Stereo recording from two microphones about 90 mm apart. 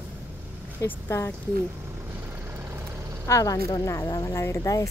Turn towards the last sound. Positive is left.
turn(degrees=35)  # may be behind; listen again after turning